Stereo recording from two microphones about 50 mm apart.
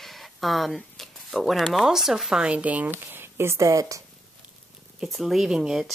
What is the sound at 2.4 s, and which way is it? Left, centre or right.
Speech, right.